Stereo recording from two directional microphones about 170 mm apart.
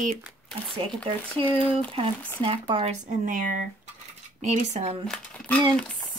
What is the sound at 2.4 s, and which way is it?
Speech, 30° right (ahead or behind).